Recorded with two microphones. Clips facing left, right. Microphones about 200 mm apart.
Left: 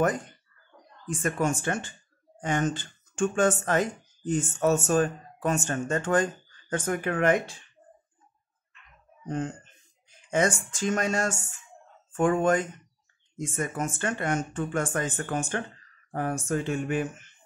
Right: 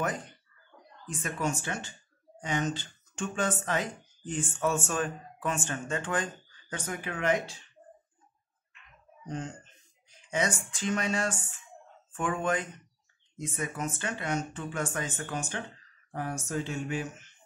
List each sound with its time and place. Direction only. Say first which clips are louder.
1.0 s speech: left 5 dB; 50° left (ahead or behind)
10.3 s speech: left 5 dB; 45° left (ahead or behind)
16.1 s a sound: left 6 dB; 55° left (ahead or behind)